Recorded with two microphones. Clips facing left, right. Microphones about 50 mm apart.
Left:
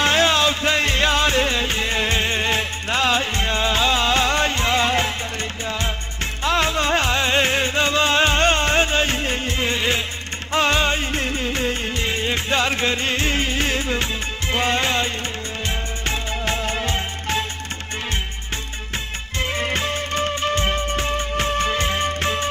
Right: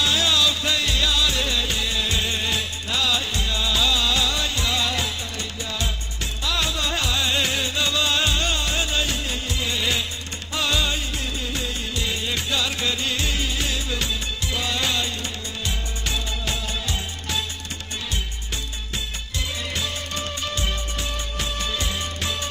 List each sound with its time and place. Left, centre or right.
0.0 s music: left
6.4 s music: left
16.1 s music: left
19.5 s music: left